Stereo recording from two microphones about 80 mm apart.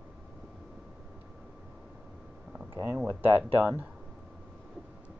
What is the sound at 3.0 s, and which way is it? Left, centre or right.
Speech, right.